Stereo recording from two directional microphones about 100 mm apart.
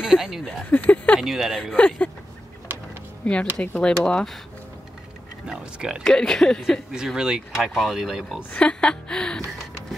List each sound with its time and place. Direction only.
0.0 s speech: 5° right (ahead or behind)
0.7 s speech: 15° left (ahead or behind)
1.2 s speech: 5° right (ahead or behind)
1.8 s speech: 15° left (ahead or behind)
3.2 s speech: 10° left (ahead or behind)
4.0 s speech: 5° left (ahead or behind)
5.5 s speech: 10° right (ahead or behind)
6.0 s speech: 5° left (ahead or behind)
6.9 s speech: 5° right (ahead or behind)
8.5 s speech: 10° left (ahead or behind)